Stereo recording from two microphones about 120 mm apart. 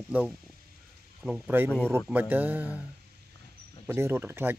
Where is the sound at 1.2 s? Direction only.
10° right (ahead or behind).